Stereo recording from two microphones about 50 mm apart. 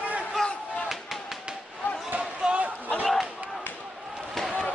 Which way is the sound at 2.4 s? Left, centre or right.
Centre.